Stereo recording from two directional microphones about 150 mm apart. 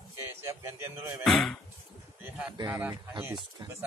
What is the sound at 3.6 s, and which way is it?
Speech, 25° right (ahead or behind).